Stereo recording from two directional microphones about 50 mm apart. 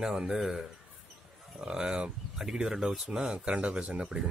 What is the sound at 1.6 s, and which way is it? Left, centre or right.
Speech, centre.